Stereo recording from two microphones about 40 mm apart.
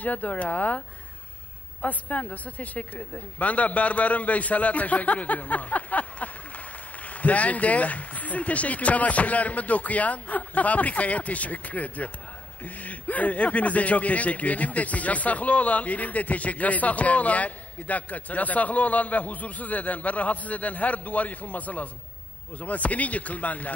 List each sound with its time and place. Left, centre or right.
0.0 s a man's voice: left